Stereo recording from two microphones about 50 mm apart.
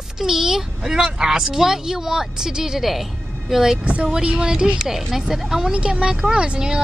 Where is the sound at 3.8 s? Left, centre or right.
Right.